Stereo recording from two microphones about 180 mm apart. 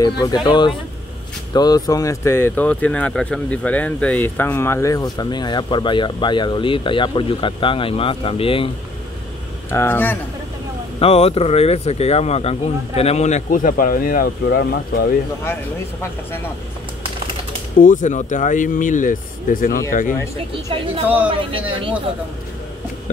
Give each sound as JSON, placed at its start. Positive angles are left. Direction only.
{"t": 0.2, "sound": "speech", "side_deg": 25}
{"t": 9.7, "sound": "speech", "side_deg": 15}
{"t": 11.0, "sound": "speech", "side_deg": 35}
{"t": 17.7, "sound": "speech", "side_deg": 45}
{"t": 21.3, "sound": "speech", "side_deg": -30}